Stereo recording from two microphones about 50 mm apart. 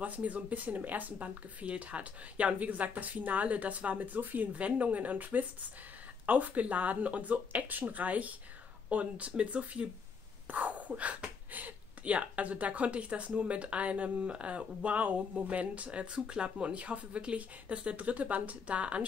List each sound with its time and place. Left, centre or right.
0.0 s speech: right
4.6 s speech: right